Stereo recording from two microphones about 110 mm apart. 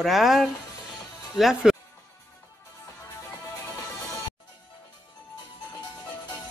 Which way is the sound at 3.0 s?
30° left (ahead or behind).